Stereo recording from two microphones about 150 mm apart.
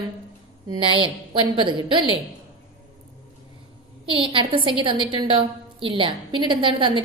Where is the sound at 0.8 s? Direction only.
35° right (ahead or behind).